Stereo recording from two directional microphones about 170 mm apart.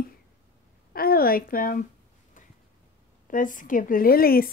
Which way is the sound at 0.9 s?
60° left (ahead or behind).